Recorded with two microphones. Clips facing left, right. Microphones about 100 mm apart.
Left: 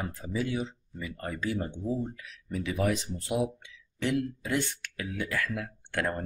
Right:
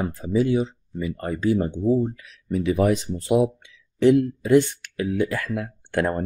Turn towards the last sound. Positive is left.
turn(degrees=-25)  # may be behind; listen again after turning